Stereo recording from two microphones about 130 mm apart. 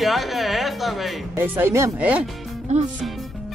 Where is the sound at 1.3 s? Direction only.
20° right (ahead or behind).